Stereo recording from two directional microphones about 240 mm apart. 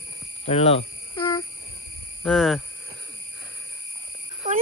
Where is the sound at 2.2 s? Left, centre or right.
Centre.